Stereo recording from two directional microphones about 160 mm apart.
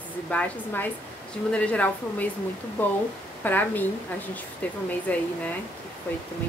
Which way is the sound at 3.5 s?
10° left (ahead or behind).